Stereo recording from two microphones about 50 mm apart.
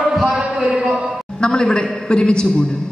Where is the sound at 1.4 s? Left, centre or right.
Centre.